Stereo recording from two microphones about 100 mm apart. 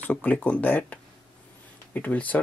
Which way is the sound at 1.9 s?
15° left (ahead or behind).